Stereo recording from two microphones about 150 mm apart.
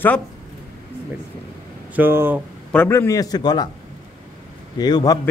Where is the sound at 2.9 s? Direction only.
20° left (ahead or behind).